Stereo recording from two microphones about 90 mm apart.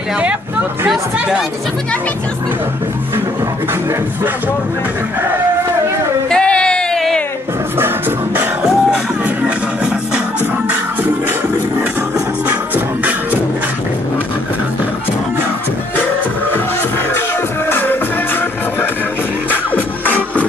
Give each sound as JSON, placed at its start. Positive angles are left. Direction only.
{"t": 6.3, "sound": "a sound", "side_deg": 10}
{"t": 8.6, "sound": "music", "side_deg": -10}
{"t": 12.4, "sound": "music", "side_deg": -20}
{"t": 17.6, "sound": "music", "side_deg": 25}